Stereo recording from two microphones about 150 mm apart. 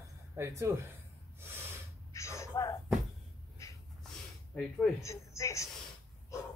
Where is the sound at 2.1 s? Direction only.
20° left (ahead or behind).